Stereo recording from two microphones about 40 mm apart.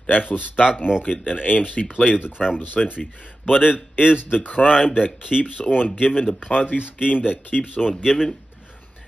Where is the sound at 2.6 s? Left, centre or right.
Left.